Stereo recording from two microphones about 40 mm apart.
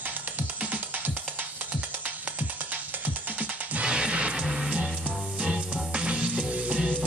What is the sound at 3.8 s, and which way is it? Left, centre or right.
Music, right.